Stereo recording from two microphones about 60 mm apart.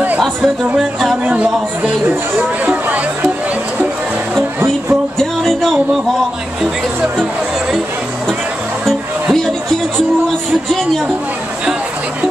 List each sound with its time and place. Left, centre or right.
1.2 s speech: right
2.6 s music: right
4.4 s music: right
5.2 s music: centre
8.8 s music: centre